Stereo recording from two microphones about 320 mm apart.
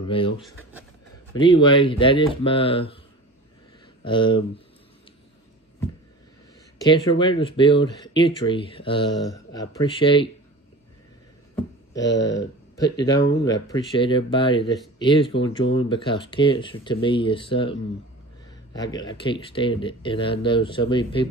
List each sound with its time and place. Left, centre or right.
0.0 s speech: centre
1.4 s speech: centre
4.0 s speech: centre
6.8 s speech: centre
12.1 s speech: centre